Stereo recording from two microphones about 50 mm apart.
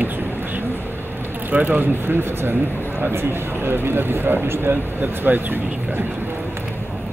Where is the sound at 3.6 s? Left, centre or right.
Right.